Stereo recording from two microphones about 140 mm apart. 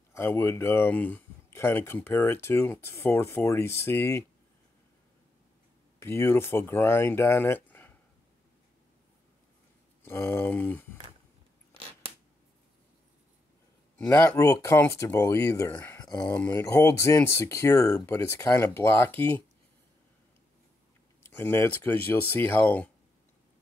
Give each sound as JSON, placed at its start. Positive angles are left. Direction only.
{"t": 0.1, "sound": "speech", "side_deg": 15}
{"t": 5.9, "sound": "speech", "side_deg": 15}
{"t": 10.0, "sound": "speech", "side_deg": 15}
{"t": 13.9, "sound": "speech", "side_deg": 20}
{"t": 21.2, "sound": "speech", "side_deg": 15}